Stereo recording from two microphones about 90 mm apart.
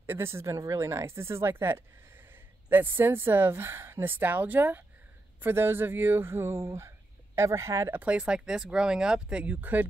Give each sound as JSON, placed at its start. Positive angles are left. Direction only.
{"t": 0.0, "sound": "a woman's voice", "side_deg": -25}
{"t": 7.9, "sound": "speech", "side_deg": -15}